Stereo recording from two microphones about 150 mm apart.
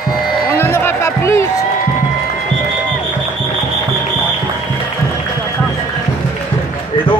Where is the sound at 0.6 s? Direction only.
15° left (ahead or behind).